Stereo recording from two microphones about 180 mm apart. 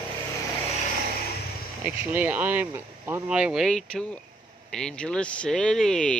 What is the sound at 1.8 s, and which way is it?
Speech, 10° right (ahead or behind).